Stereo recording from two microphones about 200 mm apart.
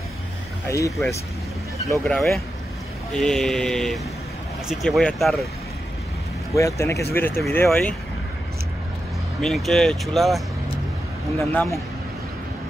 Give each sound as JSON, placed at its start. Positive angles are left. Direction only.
{"t": 0.7, "sound": "speech", "side_deg": 15}
{"t": 1.9, "sound": "speech", "side_deg": 5}
{"t": 6.5, "sound": "speech", "side_deg": 15}
{"t": 9.4, "sound": "speech", "side_deg": 0}
{"t": 11.3, "sound": "speech", "side_deg": 15}